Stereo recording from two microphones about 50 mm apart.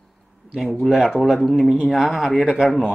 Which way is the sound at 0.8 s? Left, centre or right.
Centre.